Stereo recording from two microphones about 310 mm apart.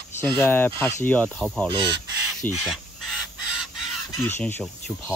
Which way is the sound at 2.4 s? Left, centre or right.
Centre.